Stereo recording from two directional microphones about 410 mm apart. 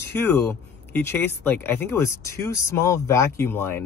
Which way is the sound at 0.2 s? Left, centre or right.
Centre.